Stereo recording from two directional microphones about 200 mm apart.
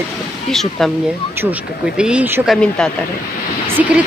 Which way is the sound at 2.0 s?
5° right (ahead or behind).